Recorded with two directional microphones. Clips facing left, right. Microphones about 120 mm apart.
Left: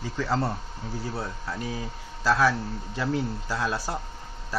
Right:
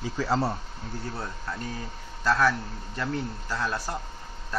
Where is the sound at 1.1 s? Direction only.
10° left (ahead or behind).